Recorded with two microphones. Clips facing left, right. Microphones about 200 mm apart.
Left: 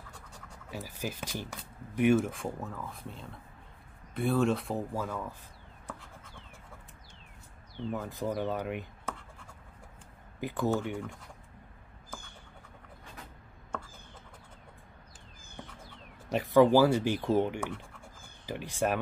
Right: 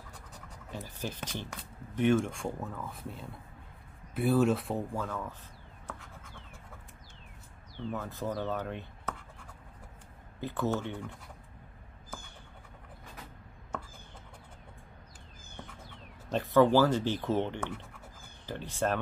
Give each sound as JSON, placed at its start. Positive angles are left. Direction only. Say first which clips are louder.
{"t": 0.7, "sound": "speech", "louder": "left 1 dB", "side_deg": 10}
{"t": 7.9, "sound": "speech", "louder": "left 2 dB", "side_deg": 15}
{"t": 10.4, "sound": "speech", "louder": "left 2 dB", "side_deg": 15}
{"t": 16.3, "sound": "speech", "louder": "left 2 dB", "side_deg": 10}